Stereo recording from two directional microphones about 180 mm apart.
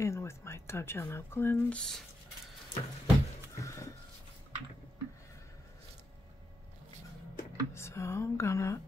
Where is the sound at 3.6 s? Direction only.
15° left (ahead or behind).